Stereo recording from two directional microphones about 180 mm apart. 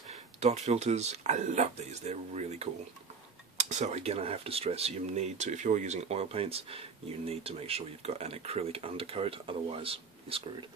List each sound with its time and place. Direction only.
0.4 s speech: 40° right (ahead or behind)